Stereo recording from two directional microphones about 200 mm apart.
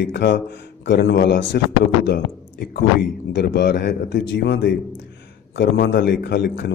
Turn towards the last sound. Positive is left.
turn(degrees=60)  # may be behind; listen again after turning